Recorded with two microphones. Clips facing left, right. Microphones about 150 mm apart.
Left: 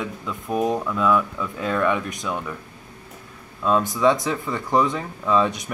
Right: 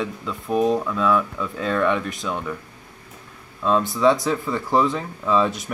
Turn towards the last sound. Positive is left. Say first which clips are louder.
# even
turn(degrees=0)  # may be behind; listen again after turning